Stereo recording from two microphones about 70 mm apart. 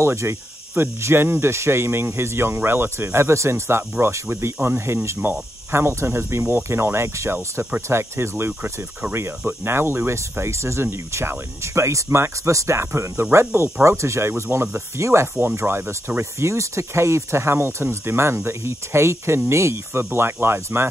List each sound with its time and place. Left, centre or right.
0.0 s speech: right